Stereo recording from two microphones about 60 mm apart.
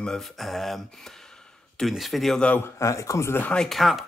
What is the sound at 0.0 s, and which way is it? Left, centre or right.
Speech, centre.